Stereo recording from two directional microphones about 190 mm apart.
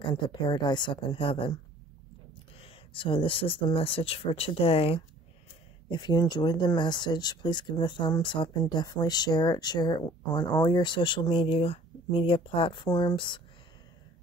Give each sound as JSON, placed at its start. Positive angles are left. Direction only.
{"t": 0.3, "sound": "speech", "side_deg": 25}